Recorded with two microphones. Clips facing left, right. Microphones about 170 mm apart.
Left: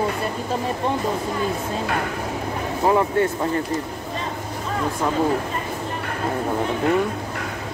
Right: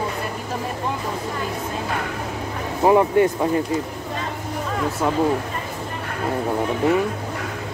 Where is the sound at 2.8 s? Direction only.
15° right (ahead or behind).